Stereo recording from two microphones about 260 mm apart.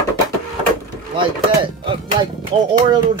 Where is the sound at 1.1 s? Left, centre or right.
Centre.